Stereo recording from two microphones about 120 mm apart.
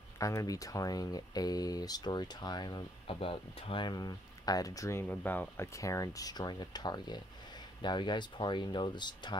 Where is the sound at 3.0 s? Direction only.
50° left (ahead or behind).